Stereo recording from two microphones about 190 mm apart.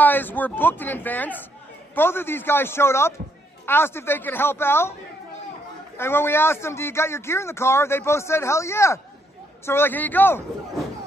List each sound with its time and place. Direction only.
0.0 s a man's voice: 10° left (ahead or behind)
5.9 s a man's voice: 10° left (ahead or behind)